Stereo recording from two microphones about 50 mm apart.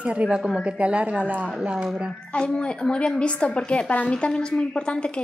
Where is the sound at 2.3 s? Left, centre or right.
Centre.